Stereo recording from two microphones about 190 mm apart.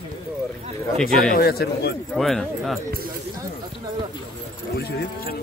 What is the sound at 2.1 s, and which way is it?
Speech, centre (ahead or behind).